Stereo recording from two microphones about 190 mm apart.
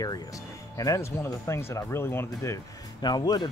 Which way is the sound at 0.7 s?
15° left (ahead or behind).